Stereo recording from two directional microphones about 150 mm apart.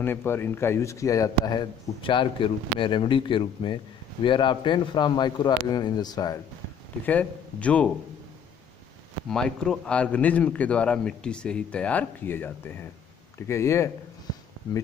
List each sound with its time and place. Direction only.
0.0 s a man's voice: 15° left (ahead or behind)
2.0 s a man's voice: 35° left (ahead or behind)
7.1 s a man's voice: 10° left (ahead or behind)
9.3 s a man's voice: 5° left (ahead or behind)